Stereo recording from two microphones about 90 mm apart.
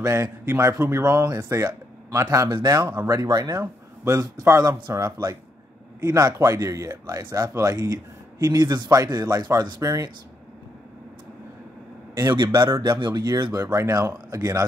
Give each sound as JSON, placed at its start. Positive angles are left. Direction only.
{"t": 0.0, "sound": "speech", "side_deg": -30}
{"t": 2.9, "sound": "a man's voice", "side_deg": -25}
{"t": 3.3, "sound": "speech", "side_deg": -45}
{"t": 4.0, "sound": "a man's voice", "side_deg": -30}
{"t": 12.4, "sound": "a man's voice", "side_deg": -55}